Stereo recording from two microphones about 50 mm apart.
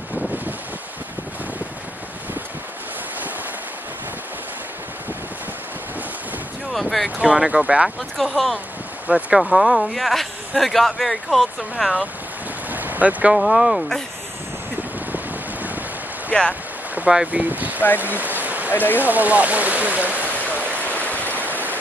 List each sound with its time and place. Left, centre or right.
6.7 s speech: centre
7.2 s speech: centre
8.2 s speech: centre
12.6 s boat: right
13.3 s speech: centre
15.1 s wind: right
16.3 s speech: left
17.0 s boat: right
17.3 s speech: right
18.4 s a sound: right
18.9 s speech: right
20.5 s stream: right
20.9 s stream: left
21.2 s waves: right